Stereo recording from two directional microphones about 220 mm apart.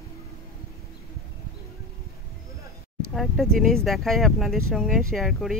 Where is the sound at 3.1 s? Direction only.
Centre (ahead or behind).